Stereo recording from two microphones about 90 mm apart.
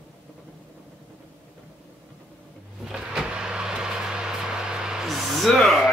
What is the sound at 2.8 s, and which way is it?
Vehicle, 10° right (ahead or behind).